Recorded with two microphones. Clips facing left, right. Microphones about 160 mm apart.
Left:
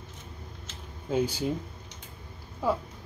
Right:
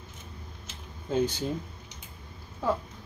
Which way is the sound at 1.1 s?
10° left (ahead or behind).